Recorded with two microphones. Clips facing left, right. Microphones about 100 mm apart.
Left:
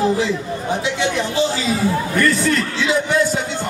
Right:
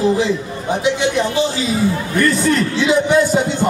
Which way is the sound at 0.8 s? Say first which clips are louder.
Right 7 dB; 15° right (ahead or behind).